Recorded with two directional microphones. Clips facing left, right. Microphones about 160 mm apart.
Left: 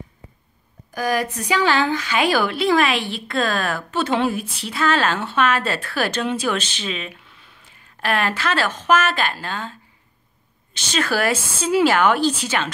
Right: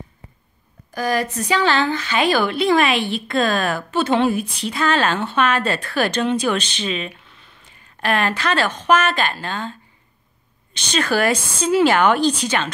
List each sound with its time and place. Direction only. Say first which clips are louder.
0.9 s a woman's voice: right 1 dB; 10° left (ahead or behind)